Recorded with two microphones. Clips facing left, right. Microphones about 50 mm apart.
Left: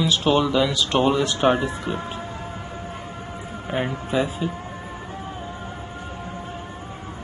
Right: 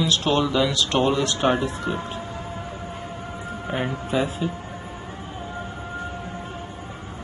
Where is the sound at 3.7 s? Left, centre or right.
Centre.